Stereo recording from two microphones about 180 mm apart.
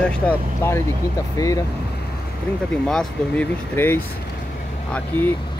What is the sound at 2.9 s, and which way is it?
Speech, 5° left (ahead or behind).